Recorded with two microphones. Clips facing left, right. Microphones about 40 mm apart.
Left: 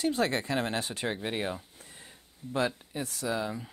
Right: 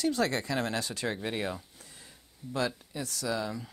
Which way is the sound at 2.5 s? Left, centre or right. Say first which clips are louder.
Left 2 dB; left.